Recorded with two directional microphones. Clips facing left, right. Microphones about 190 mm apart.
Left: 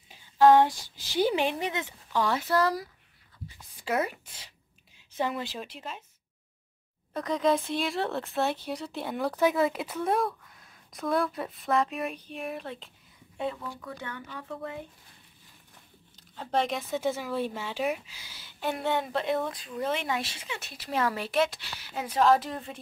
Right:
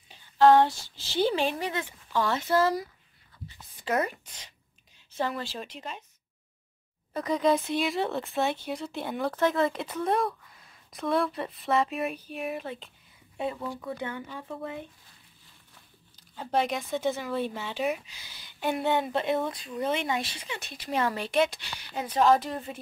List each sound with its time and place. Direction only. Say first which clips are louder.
0.1 s a woman's voice: even; 15° left (ahead or behind)
2.5 s speech: right 4 dB; centre (ahead or behind)
5.1 s speech: even; 20° left (ahead or behind)
5.6 s speech: right 1 dB; centre (ahead or behind)
7.2 s speech: right 1 dB; centre (ahead or behind)
13.6 s speech: right 5 dB; 20° right (ahead or behind)
16.3 s speech: right 1 dB; 5° right (ahead or behind)
18.6 s speech: right 2 dB; centre (ahead or behind)